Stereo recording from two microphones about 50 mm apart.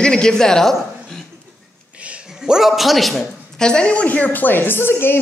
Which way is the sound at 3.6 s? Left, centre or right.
Centre.